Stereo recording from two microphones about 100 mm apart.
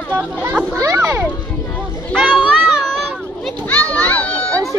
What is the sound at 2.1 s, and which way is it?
Children playing, 5° left (ahead or behind).